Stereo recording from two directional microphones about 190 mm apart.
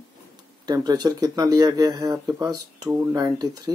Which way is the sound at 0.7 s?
20° right (ahead or behind).